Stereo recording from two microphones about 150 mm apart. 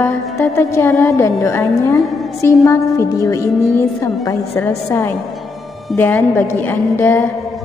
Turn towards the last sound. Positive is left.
turn(degrees=15)  # may be behind; listen again after turning